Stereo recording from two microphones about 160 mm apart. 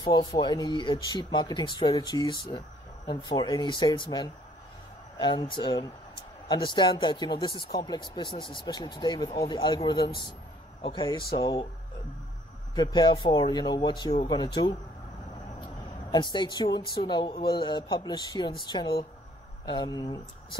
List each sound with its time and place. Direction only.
0.0 s a woman's voice: 25° left (ahead or behind)
12.7 s a woman's voice: 25° left (ahead or behind)